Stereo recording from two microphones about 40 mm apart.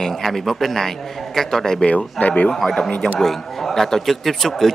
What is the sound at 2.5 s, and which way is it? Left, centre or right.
A man's voice, centre.